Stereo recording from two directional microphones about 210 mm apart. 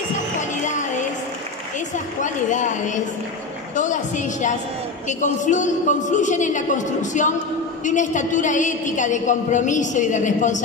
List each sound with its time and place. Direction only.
0.4 s music: 35° left (ahead or behind)
2.2 s a woman's voice: 35° left (ahead or behind)